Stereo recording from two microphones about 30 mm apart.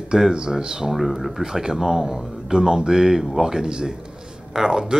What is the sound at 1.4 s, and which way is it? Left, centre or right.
Speech, centre.